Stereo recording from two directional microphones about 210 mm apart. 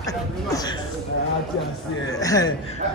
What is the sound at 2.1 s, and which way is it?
Speech, 15° left (ahead or behind).